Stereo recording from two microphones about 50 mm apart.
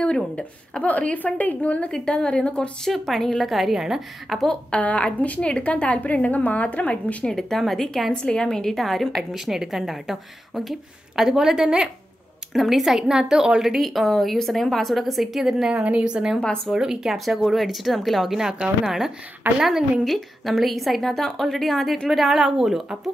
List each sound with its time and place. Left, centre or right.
0.0 s speech: left
0.8 s a woman's voice: left
1.9 s speech: centre
2.9 s a woman's voice: centre
4.6 s speech: left
7.2 s a woman's voice: centre
12.5 s a woman's voice: centre
13.7 s a woman's voice: centre
15.7 s a woman's voice: right; by 22.8 s centre